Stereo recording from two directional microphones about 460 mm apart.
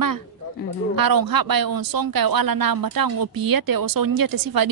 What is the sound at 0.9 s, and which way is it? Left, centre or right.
Speech, right.